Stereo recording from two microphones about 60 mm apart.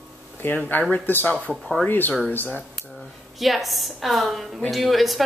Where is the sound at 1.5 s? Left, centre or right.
Centre.